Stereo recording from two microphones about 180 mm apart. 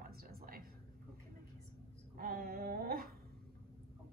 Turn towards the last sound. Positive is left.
turn(degrees=-55)  # may be behind; listen again after turning